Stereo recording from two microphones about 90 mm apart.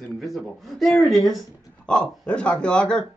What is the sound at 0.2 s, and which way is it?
Speech, centre (ahead or behind).